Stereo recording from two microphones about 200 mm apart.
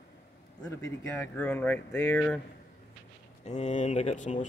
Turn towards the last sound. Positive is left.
turn(degrees=35)  # may be behind; listen again after turning